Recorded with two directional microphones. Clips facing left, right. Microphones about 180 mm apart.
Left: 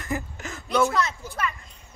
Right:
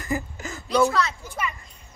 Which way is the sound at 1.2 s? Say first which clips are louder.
Left 1 dB; 15° right (ahead or behind).